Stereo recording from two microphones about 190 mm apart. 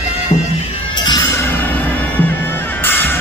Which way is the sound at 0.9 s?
20° left (ahead or behind).